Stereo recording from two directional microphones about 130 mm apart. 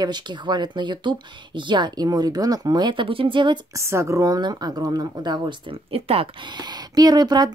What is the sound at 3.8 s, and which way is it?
Speech, 20° right (ahead or behind).